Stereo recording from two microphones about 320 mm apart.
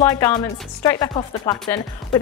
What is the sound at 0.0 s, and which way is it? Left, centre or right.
Speech, centre.